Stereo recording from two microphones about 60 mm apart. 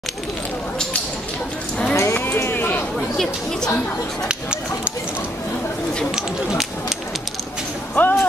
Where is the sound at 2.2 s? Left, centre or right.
Left.